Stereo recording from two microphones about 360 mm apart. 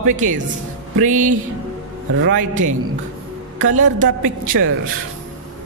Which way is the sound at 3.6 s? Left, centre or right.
Right.